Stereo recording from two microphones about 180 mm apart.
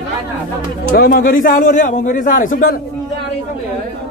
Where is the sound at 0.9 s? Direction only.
55° left (ahead or behind).